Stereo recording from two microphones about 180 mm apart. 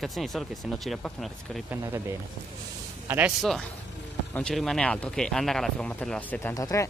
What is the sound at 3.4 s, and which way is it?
Speech, centre (ahead or behind).